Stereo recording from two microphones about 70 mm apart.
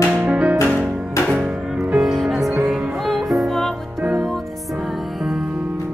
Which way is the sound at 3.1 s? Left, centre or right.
Centre.